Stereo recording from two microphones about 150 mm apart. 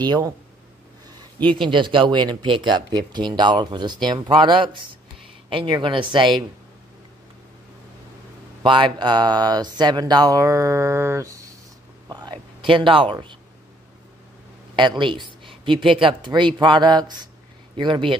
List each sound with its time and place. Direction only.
0.0 s speech: 25° right (ahead or behind)
1.7 s speech: 35° right (ahead or behind)
8.6 s speech: 35° right (ahead or behind)
12.1 s a sound: 30° right (ahead or behind)
14.8 s speech: 30° right (ahead or behind)